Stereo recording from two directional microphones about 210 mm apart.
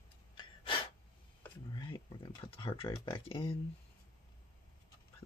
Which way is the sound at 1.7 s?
20° left (ahead or behind).